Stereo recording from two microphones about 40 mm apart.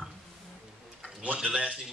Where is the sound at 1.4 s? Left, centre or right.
Right.